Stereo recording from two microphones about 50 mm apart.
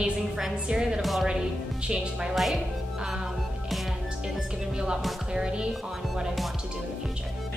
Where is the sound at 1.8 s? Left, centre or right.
Centre.